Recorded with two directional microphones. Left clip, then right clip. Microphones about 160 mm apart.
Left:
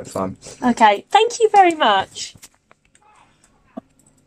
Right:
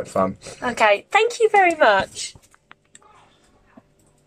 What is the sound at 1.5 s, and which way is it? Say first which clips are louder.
Speech: left 1 dB; 10° left (ahead or behind).